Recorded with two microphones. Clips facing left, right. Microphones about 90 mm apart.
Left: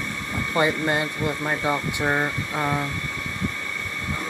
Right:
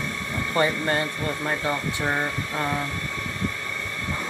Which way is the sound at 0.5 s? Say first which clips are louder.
Left 1 dB; 15° left (ahead or behind).